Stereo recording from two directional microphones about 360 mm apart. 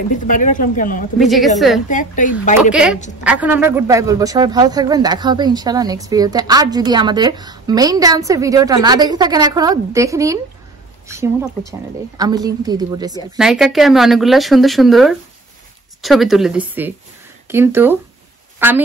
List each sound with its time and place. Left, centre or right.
0.1 s speech: left
1.2 s a woman's voice: centre
1.9 s speech: left
3.3 s a man's voice: centre